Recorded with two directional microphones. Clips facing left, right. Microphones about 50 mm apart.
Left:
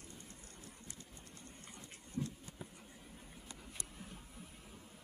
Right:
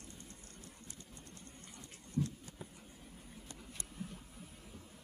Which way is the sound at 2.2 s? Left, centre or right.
Centre.